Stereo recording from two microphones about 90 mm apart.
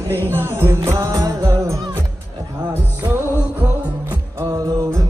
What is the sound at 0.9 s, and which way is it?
Music, 45° right (ahead or behind).